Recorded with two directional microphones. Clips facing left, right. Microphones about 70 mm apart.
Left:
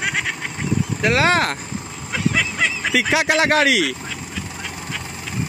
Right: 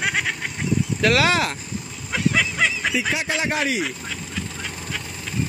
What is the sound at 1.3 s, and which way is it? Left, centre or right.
Speech, left.